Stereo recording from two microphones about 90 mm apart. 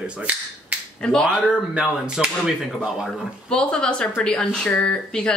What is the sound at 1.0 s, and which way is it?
Speech, 5° left (ahead or behind).